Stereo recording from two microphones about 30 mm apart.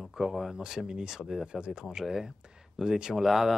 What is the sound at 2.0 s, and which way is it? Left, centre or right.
Speech, centre.